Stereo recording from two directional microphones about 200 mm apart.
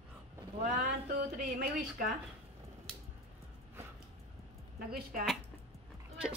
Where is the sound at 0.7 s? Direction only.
45° right (ahead or behind).